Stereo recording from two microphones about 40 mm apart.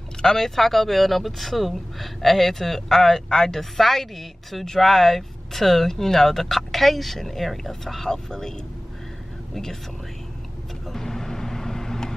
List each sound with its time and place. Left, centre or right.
0.2 s speech: centre
10.9 s vehicle: centre